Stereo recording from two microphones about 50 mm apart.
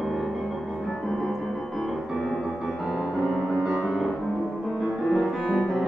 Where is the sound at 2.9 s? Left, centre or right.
Centre.